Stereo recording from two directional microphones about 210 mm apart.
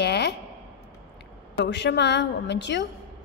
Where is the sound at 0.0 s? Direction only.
55° left (ahead or behind).